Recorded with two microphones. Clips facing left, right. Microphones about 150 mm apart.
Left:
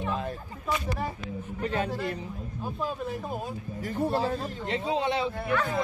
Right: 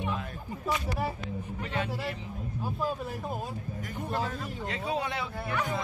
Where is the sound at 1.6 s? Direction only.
40° left (ahead or behind).